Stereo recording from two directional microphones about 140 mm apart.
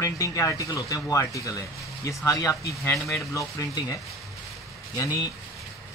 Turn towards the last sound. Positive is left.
turn(degrees=25)  # may be behind; listen again after turning